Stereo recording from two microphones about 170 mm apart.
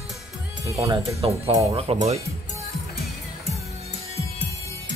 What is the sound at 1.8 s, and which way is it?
Speech, 40° right (ahead or behind).